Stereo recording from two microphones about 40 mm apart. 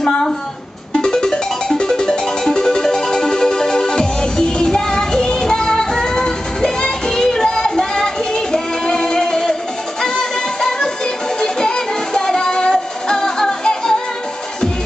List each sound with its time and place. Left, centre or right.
0.9 s music: centre